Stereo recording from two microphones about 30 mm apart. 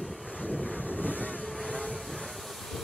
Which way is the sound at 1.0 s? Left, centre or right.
Left.